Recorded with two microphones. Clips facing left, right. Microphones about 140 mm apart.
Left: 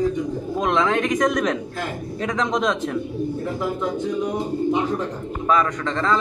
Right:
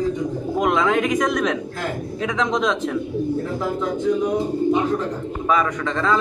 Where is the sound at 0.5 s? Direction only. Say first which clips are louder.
Right 2 dB; 5° right (ahead or behind).